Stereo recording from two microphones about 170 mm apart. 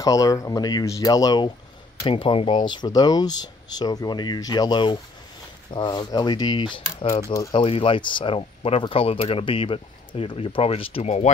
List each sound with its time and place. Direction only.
0.0 s speech: 20° left (ahead or behind); by 11.2 s 40° left (ahead or behind)